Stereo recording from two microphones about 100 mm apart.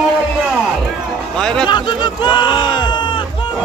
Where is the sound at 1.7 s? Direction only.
50° left (ahead or behind).